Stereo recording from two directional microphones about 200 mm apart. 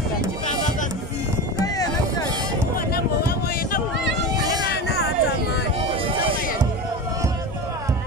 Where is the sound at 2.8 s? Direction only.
50° left (ahead or behind).